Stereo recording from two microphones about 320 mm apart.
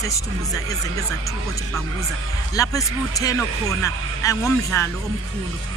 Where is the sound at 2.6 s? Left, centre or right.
Centre.